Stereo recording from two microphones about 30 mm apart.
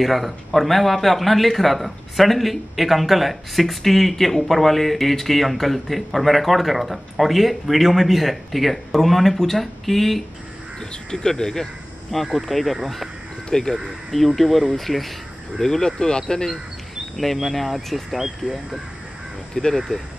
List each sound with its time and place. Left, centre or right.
0.0 s speech: centre
11.1 s speech: left
12.3 s speech: centre
13.5 s speech: left
14.1 s speech: centre
15.6 s speech: centre
17.2 s speech: centre
19.6 s speech: left